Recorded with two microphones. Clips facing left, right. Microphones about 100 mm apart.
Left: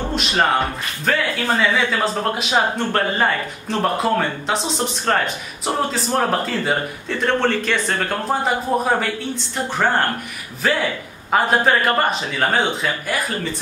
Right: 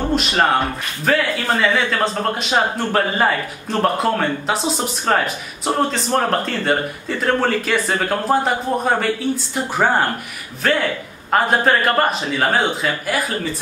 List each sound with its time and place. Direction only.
0.1 s a man's voice: centre (ahead or behind)
10.6 s a man's voice: 5° left (ahead or behind)